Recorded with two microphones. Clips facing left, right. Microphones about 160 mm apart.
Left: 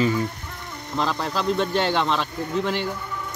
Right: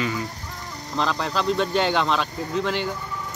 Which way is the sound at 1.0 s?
5° left (ahead or behind).